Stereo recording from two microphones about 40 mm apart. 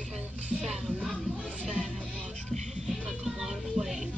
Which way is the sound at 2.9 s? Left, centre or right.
Centre.